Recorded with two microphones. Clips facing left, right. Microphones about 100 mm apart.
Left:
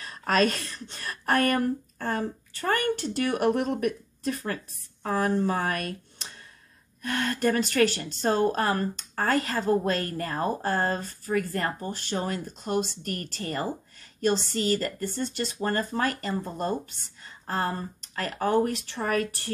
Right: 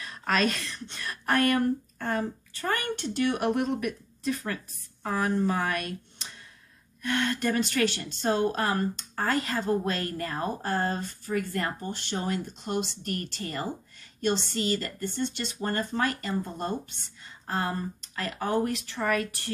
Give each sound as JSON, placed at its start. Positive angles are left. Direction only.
{"t": 0.0, "sound": "a woman's voice", "side_deg": 40}